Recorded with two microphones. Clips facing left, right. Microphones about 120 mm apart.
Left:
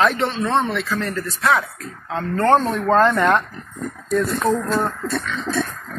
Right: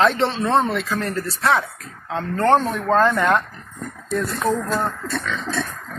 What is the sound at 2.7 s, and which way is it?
Speech, 5° right (ahead or behind).